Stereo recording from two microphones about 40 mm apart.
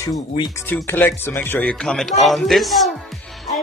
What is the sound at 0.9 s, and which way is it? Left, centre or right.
Speech, left.